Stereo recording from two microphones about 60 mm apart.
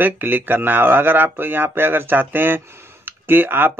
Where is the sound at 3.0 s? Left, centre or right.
Right.